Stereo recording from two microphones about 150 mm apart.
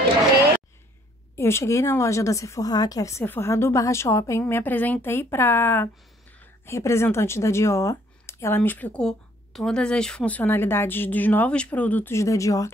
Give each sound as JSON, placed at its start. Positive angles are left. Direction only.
{"t": 1.3, "sound": "speech", "side_deg": 15}